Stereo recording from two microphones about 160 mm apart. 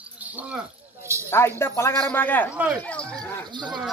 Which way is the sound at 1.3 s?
15° left (ahead or behind).